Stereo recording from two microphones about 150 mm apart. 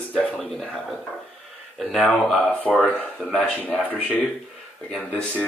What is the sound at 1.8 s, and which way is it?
Speech, centre (ahead or behind).